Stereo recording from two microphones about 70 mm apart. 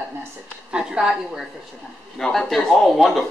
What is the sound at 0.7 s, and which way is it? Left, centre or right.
Speech, centre.